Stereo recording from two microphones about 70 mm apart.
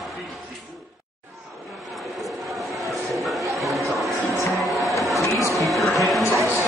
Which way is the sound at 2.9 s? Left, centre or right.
Centre.